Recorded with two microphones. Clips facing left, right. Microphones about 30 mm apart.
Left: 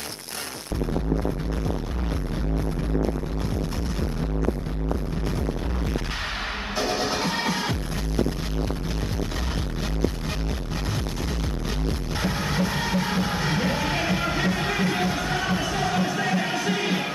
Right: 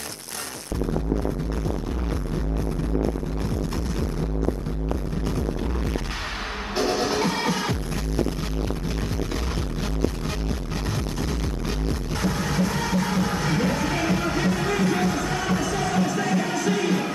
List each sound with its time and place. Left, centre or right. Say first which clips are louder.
6.8 s music: right 3 dB; centre
12.2 s music: right 1 dB; left